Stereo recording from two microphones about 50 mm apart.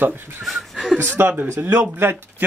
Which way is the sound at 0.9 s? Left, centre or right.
Right.